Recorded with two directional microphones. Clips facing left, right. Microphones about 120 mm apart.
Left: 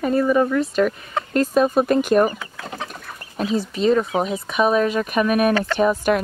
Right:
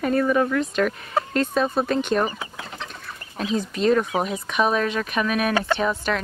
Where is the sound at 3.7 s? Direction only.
Centre (ahead or behind).